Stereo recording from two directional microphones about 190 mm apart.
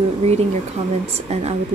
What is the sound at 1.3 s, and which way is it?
Speech, 35° right (ahead or behind).